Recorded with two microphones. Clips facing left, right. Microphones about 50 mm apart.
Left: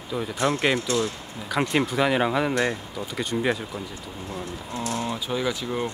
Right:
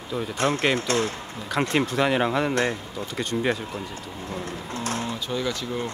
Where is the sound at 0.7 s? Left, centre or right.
Right.